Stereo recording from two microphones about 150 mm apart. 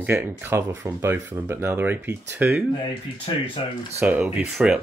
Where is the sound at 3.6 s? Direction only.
35° left (ahead or behind).